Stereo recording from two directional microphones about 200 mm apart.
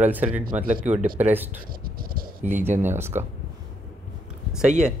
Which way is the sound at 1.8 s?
45° right (ahead or behind).